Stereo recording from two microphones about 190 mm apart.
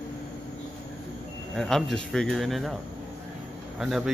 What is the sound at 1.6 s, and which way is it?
A man's voice, centre (ahead or behind).